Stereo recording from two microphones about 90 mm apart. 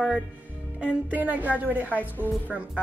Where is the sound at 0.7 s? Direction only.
15° right (ahead or behind).